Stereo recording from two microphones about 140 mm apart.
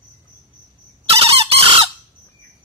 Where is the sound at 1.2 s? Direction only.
45° right (ahead or behind).